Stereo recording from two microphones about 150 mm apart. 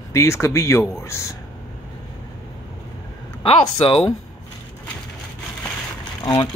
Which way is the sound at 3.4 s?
35° left (ahead or behind).